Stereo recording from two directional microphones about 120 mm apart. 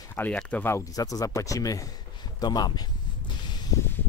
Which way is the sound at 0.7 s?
25° left (ahead or behind).